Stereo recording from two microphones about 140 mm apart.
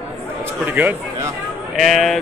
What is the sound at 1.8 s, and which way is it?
Speech, centre (ahead or behind).